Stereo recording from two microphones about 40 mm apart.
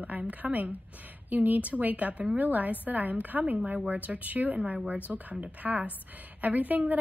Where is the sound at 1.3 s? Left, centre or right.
Right.